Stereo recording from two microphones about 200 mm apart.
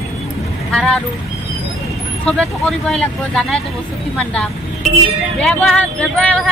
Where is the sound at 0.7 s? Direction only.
5° left (ahead or behind).